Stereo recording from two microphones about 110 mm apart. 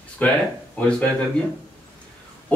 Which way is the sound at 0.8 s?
10° left (ahead or behind).